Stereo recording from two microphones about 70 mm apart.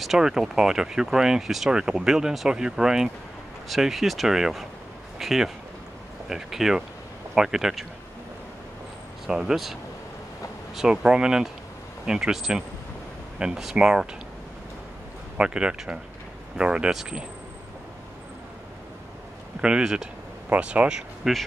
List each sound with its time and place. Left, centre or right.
0.0 s speech: centre
9.3 s speech: centre
10.8 s speech: centre
15.3 s speech: centre
19.6 s speech: centre
20.4 s speech: centre
21.2 s speech: centre